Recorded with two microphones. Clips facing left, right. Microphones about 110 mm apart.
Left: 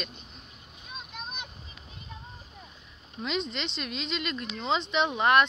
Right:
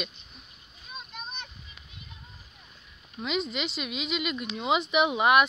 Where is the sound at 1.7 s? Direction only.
35° left (ahead or behind).